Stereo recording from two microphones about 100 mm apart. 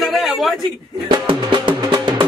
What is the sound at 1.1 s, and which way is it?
Music, 55° right (ahead or behind).